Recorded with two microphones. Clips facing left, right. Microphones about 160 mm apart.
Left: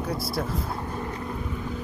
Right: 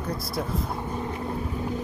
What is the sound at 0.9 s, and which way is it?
Vehicle, 15° right (ahead or behind).